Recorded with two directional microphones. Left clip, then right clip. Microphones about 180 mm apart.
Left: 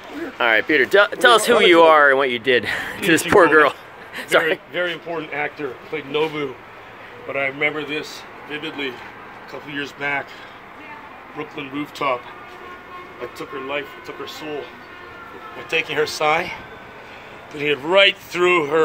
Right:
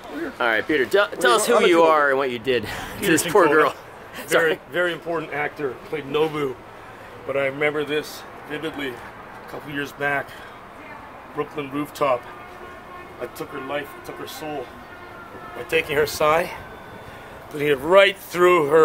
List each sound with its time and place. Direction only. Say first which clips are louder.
0.4 s speech: left 4 dB; 10° left (ahead or behind)
4.7 s a man's voice: right 1 dB; 20° right (ahead or behind)
8.5 s speech: left 2 dB; 25° right (ahead or behind)
11.3 s speech: right 2 dB; 25° right (ahead or behind)
15.7 s speech: even; 30° right (ahead or behind)
17.6 s speech: even; 35° right (ahead or behind)